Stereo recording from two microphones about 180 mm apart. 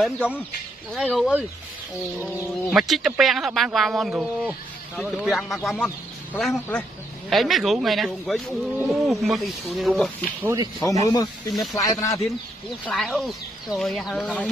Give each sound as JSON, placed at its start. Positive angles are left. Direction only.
{"t": 0.0, "sound": "speech", "side_deg": -5}
{"t": 2.7, "sound": "speech", "side_deg": 0}
{"t": 10.4, "sound": "speech", "side_deg": -20}
{"t": 11.1, "sound": "speech", "side_deg": 20}
{"t": 12.8, "sound": "speech", "side_deg": 5}